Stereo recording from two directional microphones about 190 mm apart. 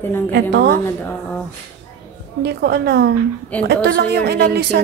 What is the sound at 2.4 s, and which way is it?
Speech, 60° right (ahead or behind).